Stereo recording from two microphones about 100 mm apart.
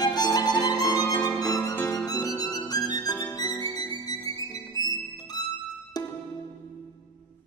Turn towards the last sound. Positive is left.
turn(degrees=40)  # may be behind; listen again after turning